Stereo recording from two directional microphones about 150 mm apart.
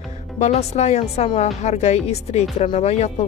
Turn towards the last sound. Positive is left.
turn(degrees=45)  # may be behind; listen again after turning